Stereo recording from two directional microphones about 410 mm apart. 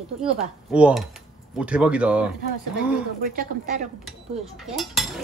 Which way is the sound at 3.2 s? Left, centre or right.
Right.